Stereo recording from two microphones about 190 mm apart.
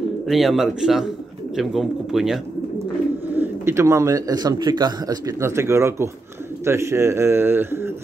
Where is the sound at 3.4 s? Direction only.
15° right (ahead or behind).